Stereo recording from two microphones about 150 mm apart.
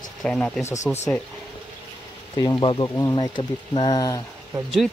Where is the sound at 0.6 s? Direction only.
20° left (ahead or behind).